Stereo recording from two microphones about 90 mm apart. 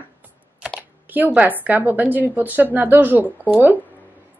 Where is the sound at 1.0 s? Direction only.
20° right (ahead or behind).